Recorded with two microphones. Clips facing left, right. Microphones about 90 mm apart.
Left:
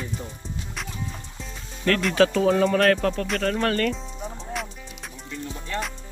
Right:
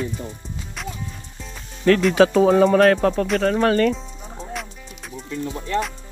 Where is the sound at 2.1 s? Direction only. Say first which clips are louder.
Right 3 dB; 20° right (ahead or behind).